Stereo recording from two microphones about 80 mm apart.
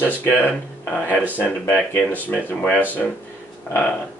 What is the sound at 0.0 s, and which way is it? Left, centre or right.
Speech, left.